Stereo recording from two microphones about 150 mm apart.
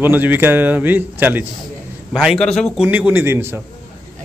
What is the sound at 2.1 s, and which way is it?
Speech, centre (ahead or behind).